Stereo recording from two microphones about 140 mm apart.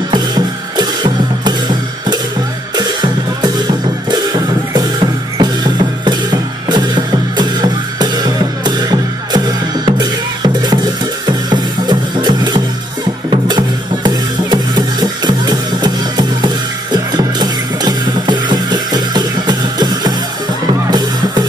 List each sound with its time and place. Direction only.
0.1 s music: 30° right (ahead or behind)
9.8 s drum: 30° right (ahead or behind)
11.2 s music: 30° right (ahead or behind)